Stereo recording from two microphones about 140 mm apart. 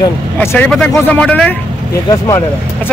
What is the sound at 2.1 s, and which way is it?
Speech, 30° left (ahead or behind).